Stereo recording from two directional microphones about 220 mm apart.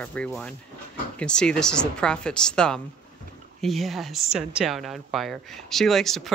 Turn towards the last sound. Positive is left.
turn(degrees=0)  # may be behind; listen again after turning